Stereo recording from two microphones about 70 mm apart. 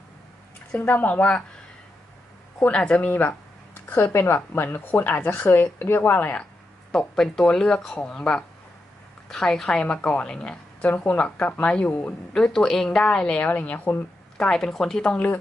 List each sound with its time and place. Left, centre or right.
0.7 s speech: left
2.6 s a woman's voice: centre
3.1 s speech: left
6.9 s a woman's voice: centre
12.4 s a woman's voice: centre
14.4 s a woman's voice: centre